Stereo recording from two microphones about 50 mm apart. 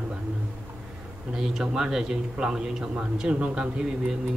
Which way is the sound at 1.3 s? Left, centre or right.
Centre.